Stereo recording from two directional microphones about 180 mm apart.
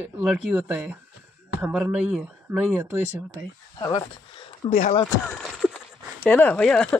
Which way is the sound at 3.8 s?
20° left (ahead or behind).